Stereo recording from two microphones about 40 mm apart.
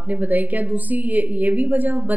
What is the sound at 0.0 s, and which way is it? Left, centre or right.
A woman's voice, right.